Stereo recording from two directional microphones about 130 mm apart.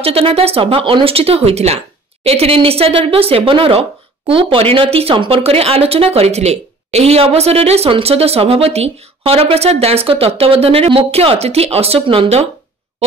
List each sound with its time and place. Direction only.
0.0 s speech: 50° right (ahead or behind)